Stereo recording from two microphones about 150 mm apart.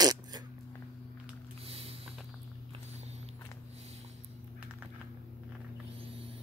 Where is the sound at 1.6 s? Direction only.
40° right (ahead or behind).